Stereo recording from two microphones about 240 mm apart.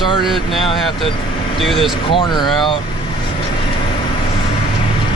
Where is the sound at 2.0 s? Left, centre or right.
Centre.